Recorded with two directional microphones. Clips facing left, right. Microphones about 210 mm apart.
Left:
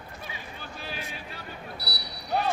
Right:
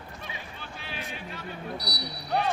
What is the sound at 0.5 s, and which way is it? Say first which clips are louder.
Music: left 4 dB; 40° left (ahead or behind).